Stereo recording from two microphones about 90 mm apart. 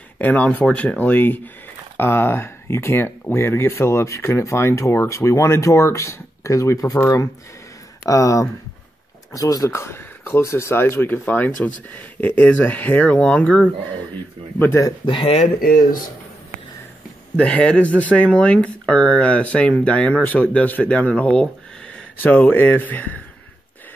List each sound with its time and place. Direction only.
0.2 s speech: 15° left (ahead or behind)
14.6 s speech: 30° left (ahead or behind)
15.0 s speech: 75° left (ahead or behind)
17.4 s speech: 15° left (ahead or behind)